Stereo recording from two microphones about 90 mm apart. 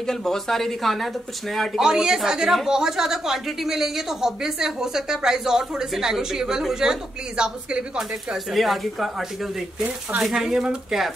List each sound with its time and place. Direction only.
0.0 s speech: 5° left (ahead or behind)
10.2 s speech: 5° right (ahead or behind)